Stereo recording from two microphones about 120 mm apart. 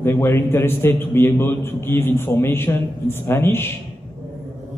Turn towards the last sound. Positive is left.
turn(degrees=20)  # may be behind; listen again after turning